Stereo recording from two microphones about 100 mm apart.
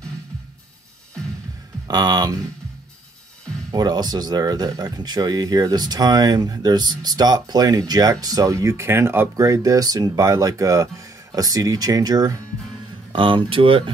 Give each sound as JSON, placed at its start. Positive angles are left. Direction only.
{"t": 1.9, "sound": "speech", "side_deg": -40}
{"t": 3.7, "sound": "speech", "side_deg": -40}
{"t": 13.1, "sound": "speech", "side_deg": -55}